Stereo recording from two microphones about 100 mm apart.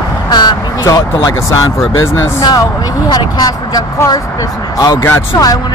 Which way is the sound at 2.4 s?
40° left (ahead or behind).